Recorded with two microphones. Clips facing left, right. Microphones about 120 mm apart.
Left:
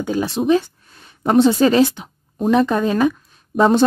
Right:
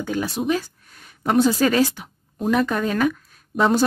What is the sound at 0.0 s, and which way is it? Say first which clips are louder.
A woman's voice: left 4 dB; 25° left (ahead or behind).